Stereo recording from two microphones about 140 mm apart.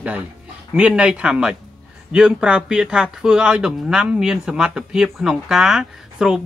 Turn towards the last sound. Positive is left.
turn(degrees=-5)  # may be behind; listen again after turning